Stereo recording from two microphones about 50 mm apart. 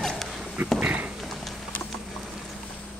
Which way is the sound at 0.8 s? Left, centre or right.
Right.